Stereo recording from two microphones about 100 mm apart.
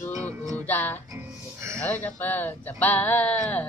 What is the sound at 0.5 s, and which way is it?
Speech, 20° left (ahead or behind).